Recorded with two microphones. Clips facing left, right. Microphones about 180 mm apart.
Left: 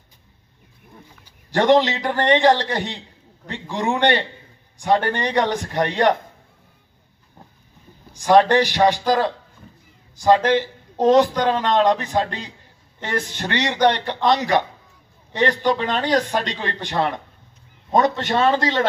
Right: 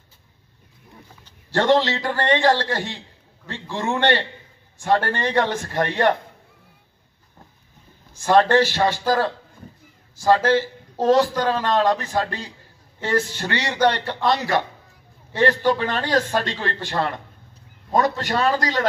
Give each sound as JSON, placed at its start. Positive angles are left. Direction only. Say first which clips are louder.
{"t": 1.2, "sound": "speech", "louder": "left 2 dB", "side_deg": 15}
{"t": 8.1, "sound": "a man's voice", "louder": "left 2 dB", "side_deg": 15}